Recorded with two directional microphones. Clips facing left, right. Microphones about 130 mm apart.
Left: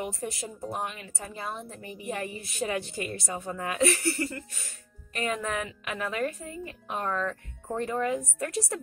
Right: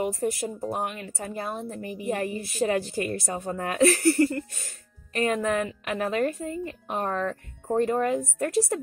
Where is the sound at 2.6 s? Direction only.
40° right (ahead or behind).